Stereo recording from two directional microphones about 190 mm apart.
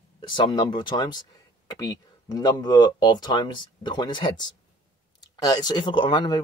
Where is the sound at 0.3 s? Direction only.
25° left (ahead or behind).